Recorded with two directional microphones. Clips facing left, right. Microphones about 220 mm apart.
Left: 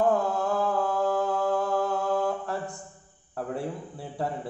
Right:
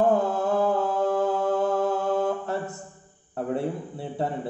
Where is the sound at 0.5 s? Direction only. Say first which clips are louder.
Right 3 dB; 25° right (ahead or behind).